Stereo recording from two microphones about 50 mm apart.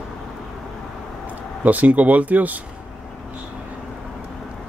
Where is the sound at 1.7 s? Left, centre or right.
Right.